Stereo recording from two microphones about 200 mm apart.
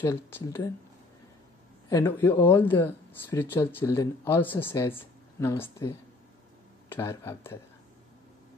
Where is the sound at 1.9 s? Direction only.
15° left (ahead or behind).